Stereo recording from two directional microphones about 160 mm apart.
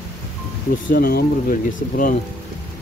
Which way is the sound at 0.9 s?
70° left (ahead or behind).